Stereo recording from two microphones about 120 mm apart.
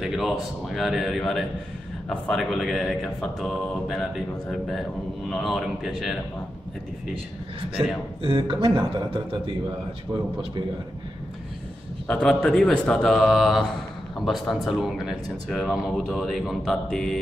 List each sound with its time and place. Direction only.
0.0 s speech: centre (ahead or behind)
8.2 s speech: 45° right (ahead or behind)
12.1 s speech: 5° left (ahead or behind)